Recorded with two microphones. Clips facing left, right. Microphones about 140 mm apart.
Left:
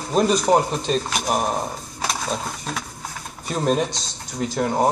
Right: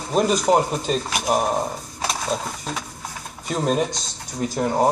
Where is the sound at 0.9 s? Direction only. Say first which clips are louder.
Right 1 dB; 15° right (ahead or behind).